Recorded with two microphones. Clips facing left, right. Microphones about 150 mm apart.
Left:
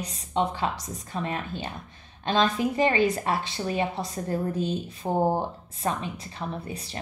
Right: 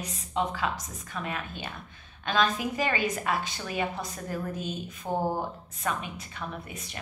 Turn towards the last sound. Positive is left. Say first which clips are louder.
# left 4 dB
turn(degrees=30)  # may be behind; listen again after turning